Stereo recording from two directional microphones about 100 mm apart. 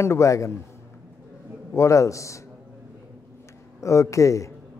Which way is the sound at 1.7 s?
30° left (ahead or behind).